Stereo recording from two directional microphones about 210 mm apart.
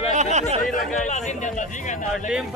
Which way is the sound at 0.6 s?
35° left (ahead or behind).